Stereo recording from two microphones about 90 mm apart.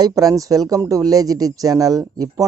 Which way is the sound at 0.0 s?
40° right (ahead or behind).